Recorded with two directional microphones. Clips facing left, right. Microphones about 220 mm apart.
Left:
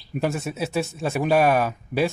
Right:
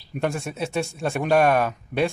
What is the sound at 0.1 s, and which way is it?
Speech, 5° left (ahead or behind).